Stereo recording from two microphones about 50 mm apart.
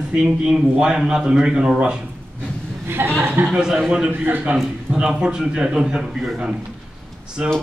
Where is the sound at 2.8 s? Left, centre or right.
Right.